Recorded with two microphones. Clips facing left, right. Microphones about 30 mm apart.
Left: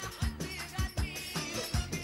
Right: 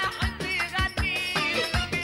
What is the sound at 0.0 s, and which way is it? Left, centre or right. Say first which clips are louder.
Music: right 11 dB; right.